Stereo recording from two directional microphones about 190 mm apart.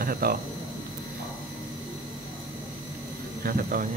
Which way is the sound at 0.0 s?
50° right (ahead or behind).